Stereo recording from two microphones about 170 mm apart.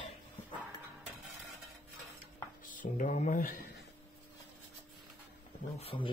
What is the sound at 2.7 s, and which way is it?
Mantra, 50° left (ahead or behind).